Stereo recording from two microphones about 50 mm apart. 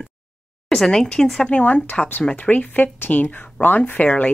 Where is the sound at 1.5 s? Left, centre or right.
Left.